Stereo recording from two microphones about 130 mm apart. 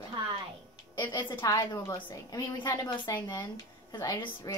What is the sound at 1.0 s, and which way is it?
Speech, 35° left (ahead or behind).